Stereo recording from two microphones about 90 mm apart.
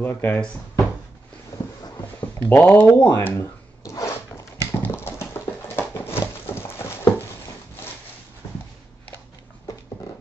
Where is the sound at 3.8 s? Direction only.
35° left (ahead or behind).